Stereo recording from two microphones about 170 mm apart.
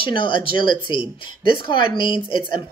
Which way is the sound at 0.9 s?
30° left (ahead or behind).